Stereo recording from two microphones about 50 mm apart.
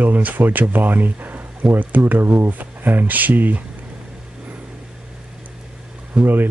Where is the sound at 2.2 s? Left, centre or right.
Right.